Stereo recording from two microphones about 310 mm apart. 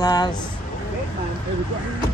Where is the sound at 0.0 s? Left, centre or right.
Centre.